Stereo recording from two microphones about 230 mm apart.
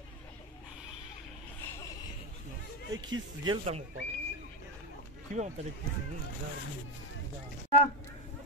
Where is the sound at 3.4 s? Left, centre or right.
Centre.